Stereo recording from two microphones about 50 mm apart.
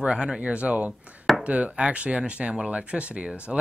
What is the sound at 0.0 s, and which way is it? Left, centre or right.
Speech, centre.